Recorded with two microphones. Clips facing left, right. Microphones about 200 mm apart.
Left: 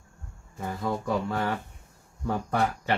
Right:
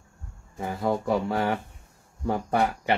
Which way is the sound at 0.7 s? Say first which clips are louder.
Right 4 dB; 15° right (ahead or behind).